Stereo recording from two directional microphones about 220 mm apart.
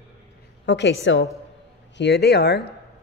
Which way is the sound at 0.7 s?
50° left (ahead or behind).